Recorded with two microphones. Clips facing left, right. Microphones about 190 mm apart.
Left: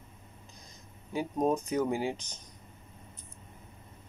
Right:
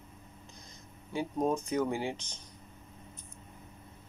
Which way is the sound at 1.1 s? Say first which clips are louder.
Left 2 dB; 15° left (ahead or behind).